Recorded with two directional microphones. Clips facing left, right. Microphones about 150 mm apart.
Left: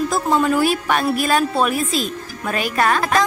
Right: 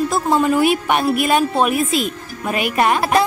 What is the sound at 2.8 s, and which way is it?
Speech, 15° right (ahead or behind).